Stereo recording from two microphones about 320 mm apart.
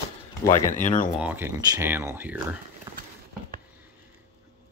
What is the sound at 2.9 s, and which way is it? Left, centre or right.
Horse, centre.